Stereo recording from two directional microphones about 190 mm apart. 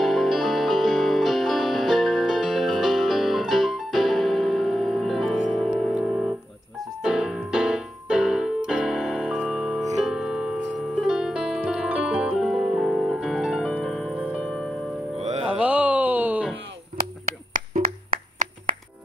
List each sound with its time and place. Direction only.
0.0 s music: centre (ahead or behind)
7.0 s keyboard: 5° right (ahead or behind)
10.0 s music: 5° right (ahead or behind)
15.1 s music: 35° right (ahead or behind)
15.4 s music: 5° right (ahead or behind)
17.5 s hands: 45° right (ahead or behind)